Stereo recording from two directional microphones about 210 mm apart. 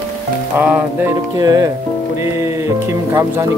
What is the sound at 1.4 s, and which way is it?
Speech, 20° right (ahead or behind).